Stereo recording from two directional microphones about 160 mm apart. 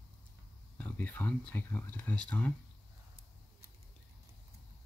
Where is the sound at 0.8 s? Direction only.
10° left (ahead or behind).